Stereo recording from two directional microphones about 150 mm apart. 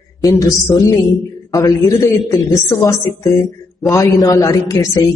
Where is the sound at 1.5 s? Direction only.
20° left (ahead or behind).